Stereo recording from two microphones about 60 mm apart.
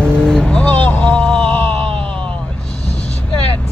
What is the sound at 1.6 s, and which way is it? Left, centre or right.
Groan, left.